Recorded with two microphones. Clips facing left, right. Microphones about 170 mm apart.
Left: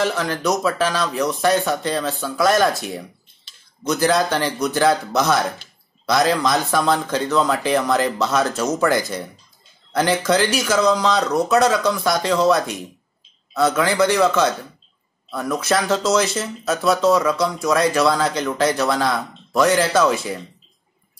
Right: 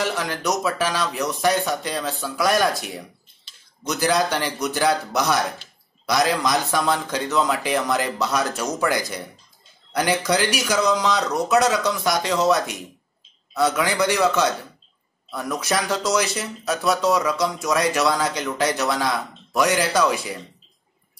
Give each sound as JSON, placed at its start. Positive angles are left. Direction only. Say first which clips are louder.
{"t": 0.1, "sound": "speech", "louder": "left 3 dB", "side_deg": -15}
{"t": 3.8, "sound": "speech", "louder": "left 3 dB", "side_deg": -15}
{"t": 13.7, "sound": "speech", "louder": "left 4 dB", "side_deg": -15}
{"t": 15.6, "sound": "speech", "louder": "left 4 dB", "side_deg": -15}